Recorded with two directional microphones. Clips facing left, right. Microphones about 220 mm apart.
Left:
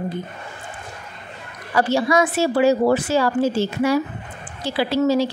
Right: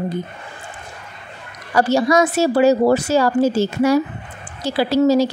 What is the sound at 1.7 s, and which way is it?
A woman's voice, 40° right (ahead or behind).